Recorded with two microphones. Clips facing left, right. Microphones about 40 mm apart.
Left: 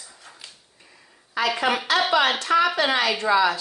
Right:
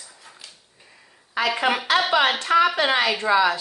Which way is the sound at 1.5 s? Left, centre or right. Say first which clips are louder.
Right 1 dB; centre.